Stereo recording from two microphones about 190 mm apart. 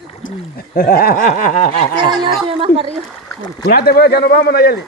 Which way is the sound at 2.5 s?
30° right (ahead or behind).